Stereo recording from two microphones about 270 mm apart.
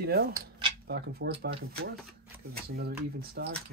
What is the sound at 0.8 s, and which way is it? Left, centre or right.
Speech, right.